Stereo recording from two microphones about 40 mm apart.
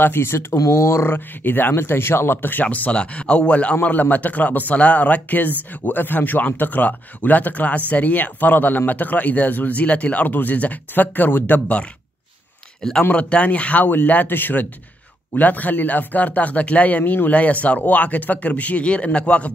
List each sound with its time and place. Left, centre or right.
0.0 s speech: left
2.6 s speech: left
2.9 s speech: left
3.8 s speech: left
10.2 s speech: left
13.1 s speech: left
13.8 s speech: left
17.0 s speech: left
17.3 s speech: left